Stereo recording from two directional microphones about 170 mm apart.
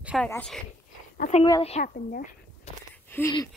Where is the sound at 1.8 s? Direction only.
55° left (ahead or behind).